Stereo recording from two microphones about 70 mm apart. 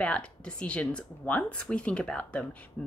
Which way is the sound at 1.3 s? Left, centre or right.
Centre.